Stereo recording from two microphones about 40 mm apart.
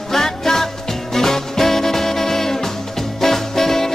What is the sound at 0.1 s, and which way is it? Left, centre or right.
Music, centre.